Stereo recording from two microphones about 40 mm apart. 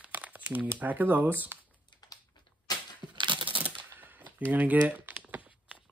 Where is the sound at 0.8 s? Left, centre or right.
Right.